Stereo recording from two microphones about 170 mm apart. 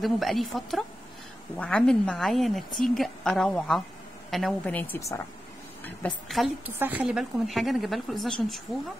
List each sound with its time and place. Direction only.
0.0 s a woman's voice: centre (ahead or behind)